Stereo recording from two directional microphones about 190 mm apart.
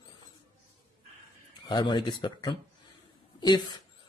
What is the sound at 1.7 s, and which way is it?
Speech, 25° left (ahead or behind).